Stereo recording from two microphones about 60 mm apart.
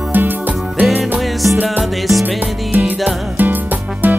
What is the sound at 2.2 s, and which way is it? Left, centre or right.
Music, right.